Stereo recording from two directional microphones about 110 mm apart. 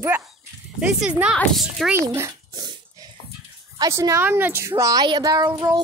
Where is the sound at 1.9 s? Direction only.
25° right (ahead or behind).